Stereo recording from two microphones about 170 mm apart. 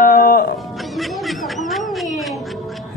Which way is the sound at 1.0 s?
Centre (ahead or behind).